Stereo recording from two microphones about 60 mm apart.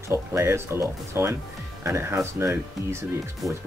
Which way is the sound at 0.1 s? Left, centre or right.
Right.